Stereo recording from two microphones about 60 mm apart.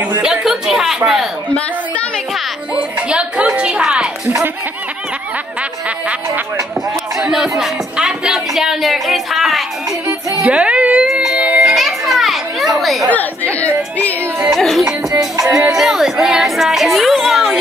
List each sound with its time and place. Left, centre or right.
0.2 s a sound: centre
2.7 s music: centre
5.6 s music: right
6.9 s a sound: centre
10.4 s music: centre
11.6 s children playing: centre
13.1 s chatter: left
14.5 s music: centre
15.0 s music: right
15.7 s a sound: centre